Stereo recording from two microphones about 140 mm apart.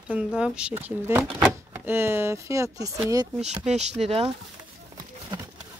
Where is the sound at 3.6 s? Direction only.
50° right (ahead or behind).